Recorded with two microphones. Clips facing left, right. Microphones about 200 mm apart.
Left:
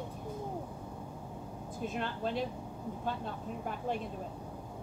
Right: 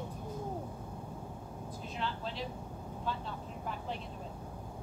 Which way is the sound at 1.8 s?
50° left (ahead or behind).